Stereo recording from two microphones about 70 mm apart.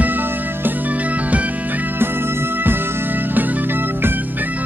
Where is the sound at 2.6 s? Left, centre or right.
Right.